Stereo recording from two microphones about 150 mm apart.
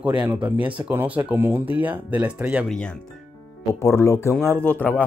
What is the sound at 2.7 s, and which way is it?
Speech, 5° left (ahead or behind).